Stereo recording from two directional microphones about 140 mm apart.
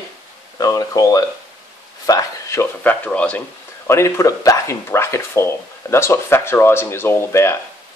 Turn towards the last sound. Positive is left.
turn(degrees=20)  # may be behind; listen again after turning